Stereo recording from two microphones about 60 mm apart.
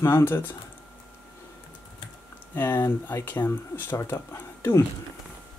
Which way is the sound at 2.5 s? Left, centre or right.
Left.